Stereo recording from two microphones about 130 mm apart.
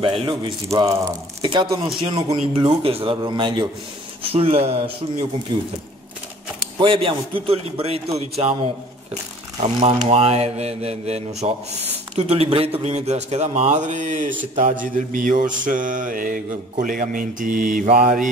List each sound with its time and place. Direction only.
0.0 s a man's voice: 40° right (ahead or behind)
5.5 s a man's voice: 35° right (ahead or behind)
6.8 s a man's voice: 40° right (ahead or behind)
9.6 s a man's voice: 55° right (ahead or behind); by 14.3 s 70° right (ahead or behind)
14.5 s mantra: 75° right (ahead or behind)